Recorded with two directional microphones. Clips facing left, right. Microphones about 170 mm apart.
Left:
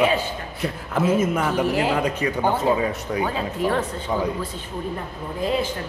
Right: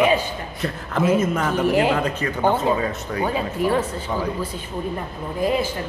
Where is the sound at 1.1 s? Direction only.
10° left (ahead or behind).